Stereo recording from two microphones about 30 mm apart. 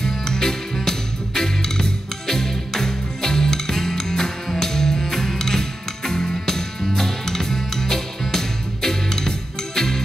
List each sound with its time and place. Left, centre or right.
0.2 s music: centre